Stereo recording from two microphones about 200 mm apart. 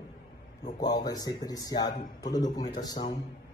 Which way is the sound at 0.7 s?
20° left (ahead or behind).